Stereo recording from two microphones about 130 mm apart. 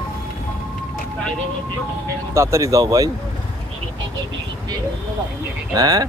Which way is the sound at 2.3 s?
25° right (ahead or behind).